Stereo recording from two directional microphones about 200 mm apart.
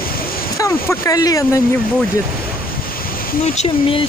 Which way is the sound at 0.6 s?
15° left (ahead or behind).